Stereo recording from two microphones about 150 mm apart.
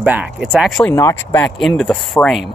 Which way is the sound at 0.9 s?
20° left (ahead or behind).